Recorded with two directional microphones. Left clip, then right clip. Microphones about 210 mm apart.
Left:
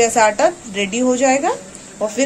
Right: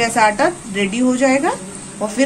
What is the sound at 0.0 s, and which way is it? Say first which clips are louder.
A woman's voice: left 1 dB; 15° left (ahead or behind).